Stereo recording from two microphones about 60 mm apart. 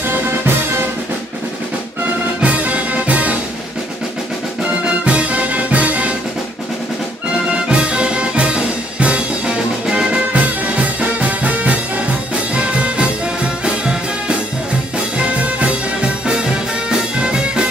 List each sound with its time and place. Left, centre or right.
2.4 s music: right
4.8 s music: centre
7.5 s music: centre